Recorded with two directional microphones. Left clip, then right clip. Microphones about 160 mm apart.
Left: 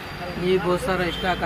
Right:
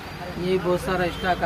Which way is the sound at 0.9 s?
15° right (ahead or behind).